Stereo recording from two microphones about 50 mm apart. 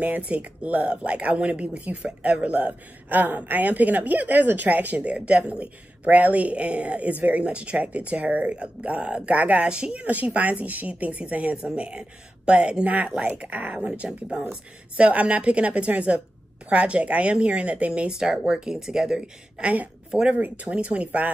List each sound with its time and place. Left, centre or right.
0.3 s speech: right
9.7 s speech: centre
10.4 s speech: right
18.1 s speech: centre
19.6 s speech: right
20.1 s speech: centre
20.3 s speech: right
20.6 s speech: right